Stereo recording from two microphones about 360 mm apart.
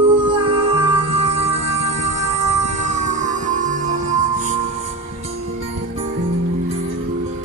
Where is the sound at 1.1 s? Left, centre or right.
Centre.